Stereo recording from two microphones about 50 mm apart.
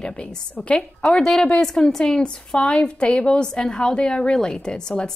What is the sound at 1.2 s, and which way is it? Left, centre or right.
A woman's voice, centre.